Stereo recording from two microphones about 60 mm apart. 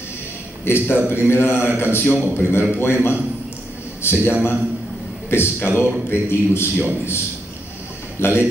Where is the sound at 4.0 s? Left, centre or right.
Left.